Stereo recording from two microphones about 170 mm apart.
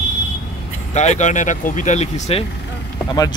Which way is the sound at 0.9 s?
40° left (ahead or behind).